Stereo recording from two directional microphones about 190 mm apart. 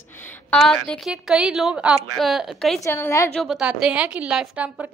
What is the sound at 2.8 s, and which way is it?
Speech, 15° left (ahead or behind).